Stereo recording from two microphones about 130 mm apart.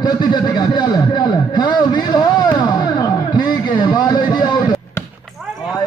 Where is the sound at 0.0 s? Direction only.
35° left (ahead or behind).